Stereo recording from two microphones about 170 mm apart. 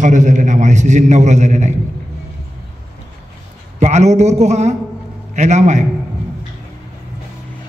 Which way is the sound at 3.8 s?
40° right (ahead or behind).